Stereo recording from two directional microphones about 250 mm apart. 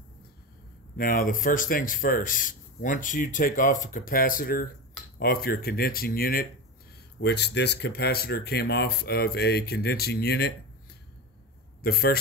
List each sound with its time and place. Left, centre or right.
0.9 s speech: left
11.8 s speech: left